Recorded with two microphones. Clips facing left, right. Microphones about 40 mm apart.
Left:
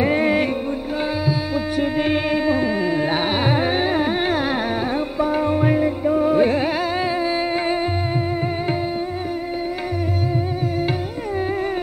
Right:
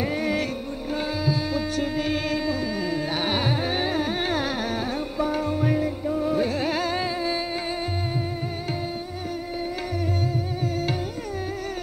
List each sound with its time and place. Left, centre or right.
0.0 s music: left
1.2 s music: centre
2.0 s a sound: left
3.3 s carnatic music: centre
3.5 s music: left